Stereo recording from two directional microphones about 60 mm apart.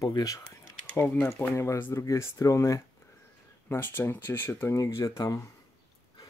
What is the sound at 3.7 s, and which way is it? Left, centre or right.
Speech, left.